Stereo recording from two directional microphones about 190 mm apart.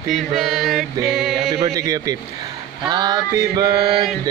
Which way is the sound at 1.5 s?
15° right (ahead or behind).